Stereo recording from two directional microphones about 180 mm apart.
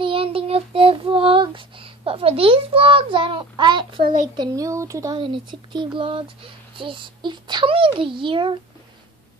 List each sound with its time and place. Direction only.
0.0 s child singing: 30° right (ahead or behind)
4.0 s a child's voice: 45° right (ahead or behind)
4.4 s speech: 20° right (ahead or behind)